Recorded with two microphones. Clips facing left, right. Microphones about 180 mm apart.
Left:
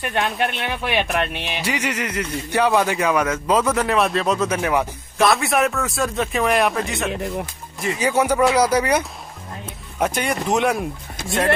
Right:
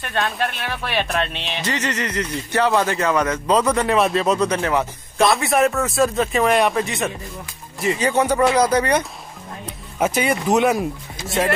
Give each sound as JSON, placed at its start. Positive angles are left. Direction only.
{"t": 0.0, "sound": "speech", "side_deg": 15}
{"t": 7.1, "sound": "speech", "side_deg": 75}
{"t": 8.0, "sound": "speech", "side_deg": 10}
{"t": 9.9, "sound": "speech", "side_deg": -5}